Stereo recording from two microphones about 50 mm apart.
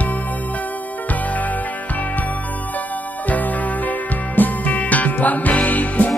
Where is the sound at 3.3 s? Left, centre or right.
Left.